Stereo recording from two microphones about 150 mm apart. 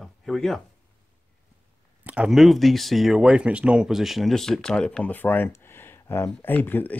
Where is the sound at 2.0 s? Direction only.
5° right (ahead or behind).